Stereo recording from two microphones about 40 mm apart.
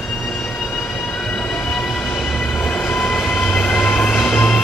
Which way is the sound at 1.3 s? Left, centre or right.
Centre.